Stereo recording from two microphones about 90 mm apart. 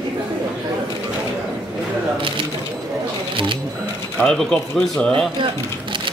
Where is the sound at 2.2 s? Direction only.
70° right (ahead or behind).